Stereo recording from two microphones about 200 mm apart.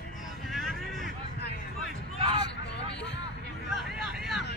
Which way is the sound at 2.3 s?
60° left (ahead or behind).